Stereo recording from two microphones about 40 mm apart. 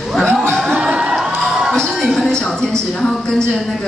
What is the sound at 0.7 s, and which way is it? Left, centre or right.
Crowd, right.